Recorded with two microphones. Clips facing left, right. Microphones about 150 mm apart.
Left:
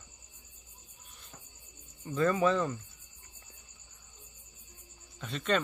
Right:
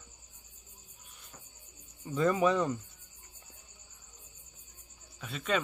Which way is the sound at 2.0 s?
15° right (ahead or behind).